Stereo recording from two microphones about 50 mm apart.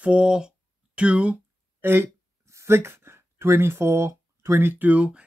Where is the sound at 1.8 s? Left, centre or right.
Right.